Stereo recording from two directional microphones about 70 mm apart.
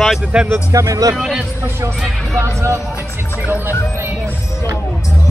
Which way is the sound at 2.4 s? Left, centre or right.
Right.